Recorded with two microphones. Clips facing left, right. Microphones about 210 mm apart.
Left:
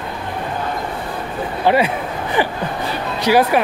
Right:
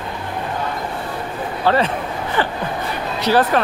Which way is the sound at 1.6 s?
10° left (ahead or behind).